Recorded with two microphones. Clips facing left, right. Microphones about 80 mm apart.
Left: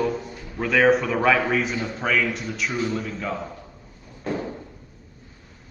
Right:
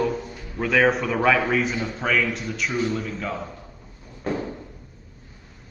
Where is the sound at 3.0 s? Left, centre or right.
Centre.